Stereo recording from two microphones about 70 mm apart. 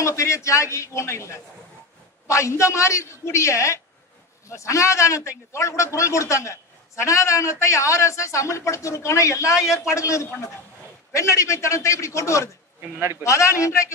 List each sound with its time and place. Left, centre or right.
0.0 s a man's voice: left